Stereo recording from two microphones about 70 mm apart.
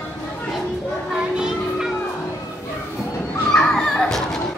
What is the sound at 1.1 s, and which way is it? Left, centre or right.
Children playing, centre.